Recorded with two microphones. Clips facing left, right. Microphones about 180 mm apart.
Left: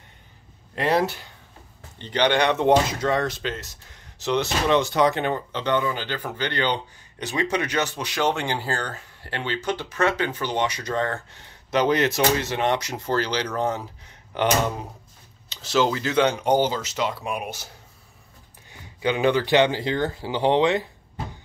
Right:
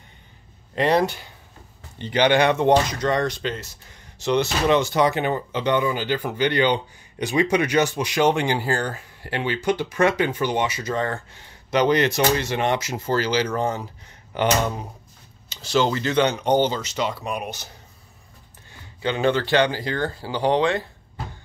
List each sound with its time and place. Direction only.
0.7 s speech: 5° left (ahead or behind)
2.0 s speech: 10° right (ahead or behind); by 17.6 s 5° left (ahead or behind)
18.7 s speech: 15° left (ahead or behind)